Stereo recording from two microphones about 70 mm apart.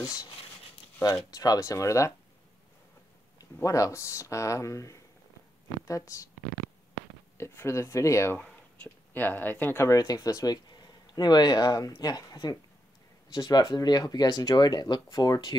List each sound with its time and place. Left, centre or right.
0.0 s speech: left
1.3 s speech: left
1.6 s speech: left
3.6 s speech: left
7.3 s speech: left
8.8 s speech: left
9.9 s speech: left
13.3 s speech: left